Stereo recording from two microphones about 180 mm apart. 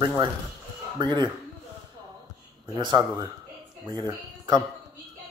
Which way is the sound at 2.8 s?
25° right (ahead or behind).